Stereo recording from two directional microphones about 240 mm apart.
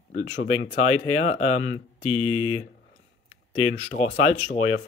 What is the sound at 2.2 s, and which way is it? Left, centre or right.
Speech, left.